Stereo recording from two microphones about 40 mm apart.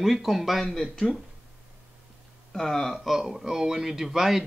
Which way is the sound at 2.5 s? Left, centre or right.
Centre.